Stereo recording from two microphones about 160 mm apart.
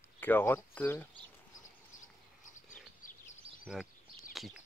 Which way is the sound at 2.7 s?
55° left (ahead or behind).